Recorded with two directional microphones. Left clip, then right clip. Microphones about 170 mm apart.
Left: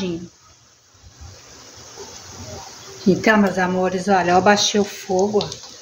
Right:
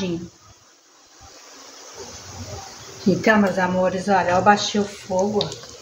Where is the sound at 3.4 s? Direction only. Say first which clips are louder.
Even; 60° left (ahead or behind).